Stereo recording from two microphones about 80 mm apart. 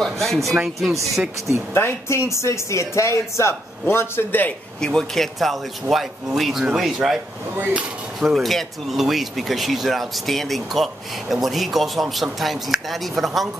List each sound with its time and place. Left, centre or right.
0.0 s speech: centre
1.7 s speech: left
4.7 s speech: centre
7.5 s speech: right
8.2 s speech: centre